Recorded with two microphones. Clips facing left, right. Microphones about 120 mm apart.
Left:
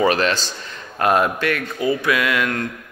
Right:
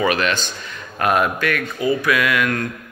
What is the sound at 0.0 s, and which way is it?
Speech, 35° left (ahead or behind).